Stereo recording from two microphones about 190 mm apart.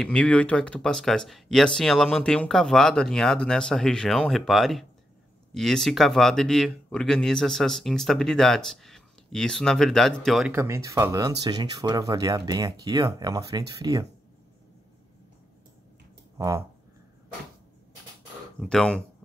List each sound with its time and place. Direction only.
0.0 s speech: 5° left (ahead or behind)
10.5 s speech: 15° right (ahead or behind)
16.3 s speech: 15° right (ahead or behind)
18.6 s speech: 5° left (ahead or behind)